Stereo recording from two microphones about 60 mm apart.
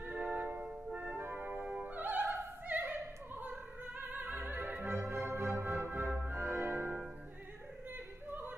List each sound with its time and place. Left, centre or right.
0.0 s music: right
4.0 s opera: right
6.1 s music: right
8.3 s yodeling: right